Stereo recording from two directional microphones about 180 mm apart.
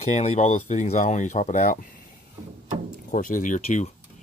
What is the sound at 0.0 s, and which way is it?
Speech, 40° left (ahead or behind).